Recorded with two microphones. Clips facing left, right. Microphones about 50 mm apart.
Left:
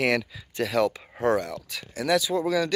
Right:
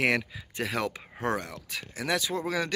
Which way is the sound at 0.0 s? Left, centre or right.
Right.